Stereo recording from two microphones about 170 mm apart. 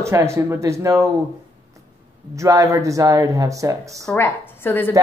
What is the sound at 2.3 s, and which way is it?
Speech, 20° right (ahead or behind).